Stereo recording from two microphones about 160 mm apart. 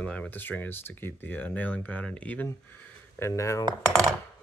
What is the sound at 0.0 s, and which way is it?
Speech, 10° left (ahead or behind).